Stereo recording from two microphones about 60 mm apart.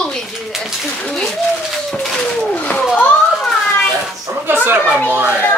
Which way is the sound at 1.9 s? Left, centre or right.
Centre.